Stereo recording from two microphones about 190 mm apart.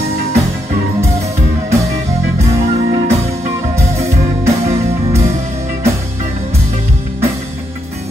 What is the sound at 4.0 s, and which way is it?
Music, 15° right (ahead or behind).